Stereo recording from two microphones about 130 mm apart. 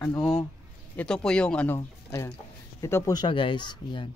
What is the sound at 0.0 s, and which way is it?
Speech, 15° left (ahead or behind).